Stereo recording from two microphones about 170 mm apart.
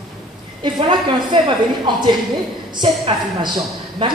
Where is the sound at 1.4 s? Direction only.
25° right (ahead or behind).